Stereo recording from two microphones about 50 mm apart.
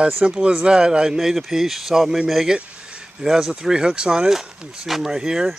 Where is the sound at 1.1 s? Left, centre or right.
Centre.